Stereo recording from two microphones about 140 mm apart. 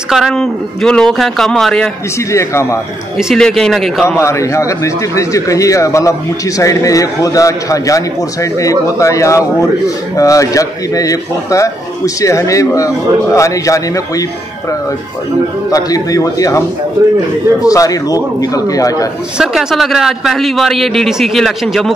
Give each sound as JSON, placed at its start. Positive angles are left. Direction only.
{"t": 0.1, "sound": "a man's voice", "side_deg": 0}
{"t": 2.3, "sound": "a man's voice", "side_deg": 20}
{"t": 3.2, "sound": "a man's voice", "side_deg": 0}
{"t": 4.2, "sound": "a man's voice", "side_deg": 20}
{"t": 15.7, "sound": "a man's voice", "side_deg": 25}
{"t": 17.6, "sound": "a man's voice", "side_deg": 25}
{"t": 19.3, "sound": "a man's voice", "side_deg": 0}